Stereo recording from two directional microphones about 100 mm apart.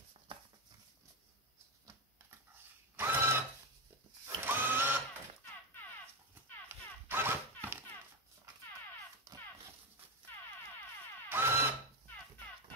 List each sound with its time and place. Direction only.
3.0 s sewing machine: 20° right (ahead or behind)
4.4 s tools: 20° right (ahead or behind)
6.7 s a sound: 20° right (ahead or behind)
11.2 s tools: 25° right (ahead or behind)